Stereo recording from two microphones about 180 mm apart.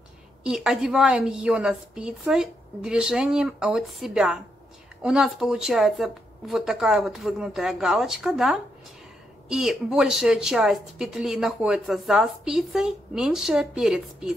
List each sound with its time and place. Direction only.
0.4 s speech: 5° right (ahead or behind)